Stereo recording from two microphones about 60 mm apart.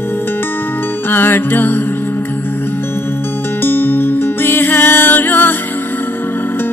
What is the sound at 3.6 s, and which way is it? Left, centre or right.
Music, left.